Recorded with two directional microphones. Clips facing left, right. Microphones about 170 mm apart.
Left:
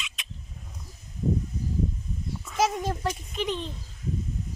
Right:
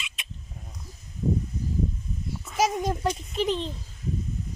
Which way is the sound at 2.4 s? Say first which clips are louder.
Right 1 dB; 10° right (ahead or behind).